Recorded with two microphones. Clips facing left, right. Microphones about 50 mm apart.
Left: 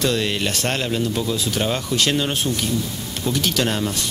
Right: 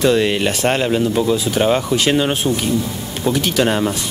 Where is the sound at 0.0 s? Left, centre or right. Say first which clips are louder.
Right 6 dB; centre.